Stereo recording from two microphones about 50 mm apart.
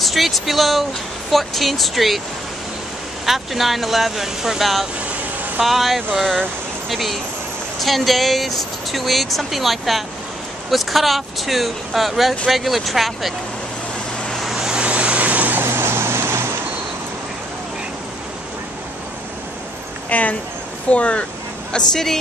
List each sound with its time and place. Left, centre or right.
0.0 s speech: centre
3.3 s speech: centre
14.4 s vehicle: centre
14.7 s a sound: right
15.6 s vehicle: right
20.1 s a sound: left
20.9 s speech: left
21.7 s a woman's voice: centre